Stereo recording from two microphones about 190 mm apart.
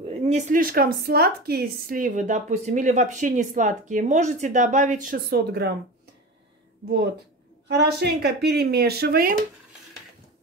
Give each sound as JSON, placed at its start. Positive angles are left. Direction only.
{"t": 0.0, "sound": "a woman's voice", "side_deg": -30}
{"t": 7.6, "sound": "speech", "side_deg": -60}